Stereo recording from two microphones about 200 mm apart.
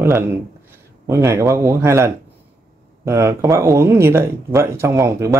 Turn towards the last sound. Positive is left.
turn(degrees=-15)  # may be behind; listen again after turning